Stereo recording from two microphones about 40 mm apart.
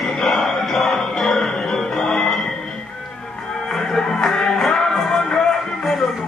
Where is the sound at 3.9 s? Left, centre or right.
Centre.